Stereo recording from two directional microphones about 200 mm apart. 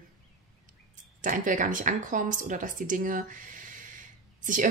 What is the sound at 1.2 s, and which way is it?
A woman's voice, 40° right (ahead or behind).